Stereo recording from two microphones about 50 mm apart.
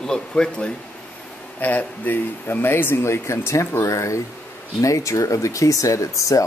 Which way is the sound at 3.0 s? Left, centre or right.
Left.